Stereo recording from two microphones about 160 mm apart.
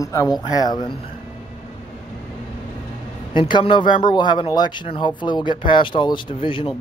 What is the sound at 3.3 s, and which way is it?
Speech, 30° left (ahead or behind).